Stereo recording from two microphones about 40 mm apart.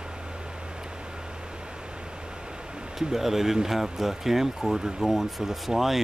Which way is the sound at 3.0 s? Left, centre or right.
Centre.